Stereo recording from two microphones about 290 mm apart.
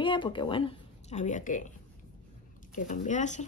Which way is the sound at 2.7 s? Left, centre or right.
Left.